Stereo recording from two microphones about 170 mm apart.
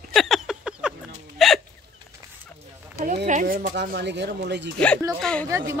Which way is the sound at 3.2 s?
50° right (ahead or behind).